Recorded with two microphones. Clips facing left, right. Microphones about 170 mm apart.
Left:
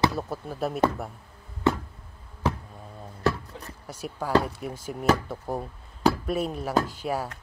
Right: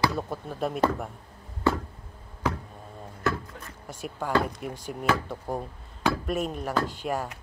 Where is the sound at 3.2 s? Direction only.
40° left (ahead or behind).